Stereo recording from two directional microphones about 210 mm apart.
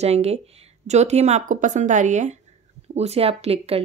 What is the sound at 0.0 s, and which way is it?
A woman's voice, 30° right (ahead or behind).